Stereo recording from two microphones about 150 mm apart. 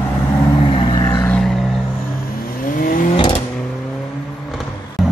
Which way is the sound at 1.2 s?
10° left (ahead or behind).